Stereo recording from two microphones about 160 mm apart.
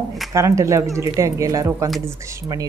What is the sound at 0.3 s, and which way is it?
Speech, 20° right (ahead or behind).